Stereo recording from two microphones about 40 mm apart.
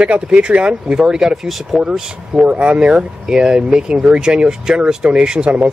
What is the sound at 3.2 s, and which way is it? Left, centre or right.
Speech, centre.